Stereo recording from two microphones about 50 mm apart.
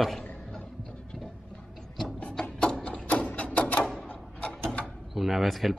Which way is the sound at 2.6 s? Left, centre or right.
Centre.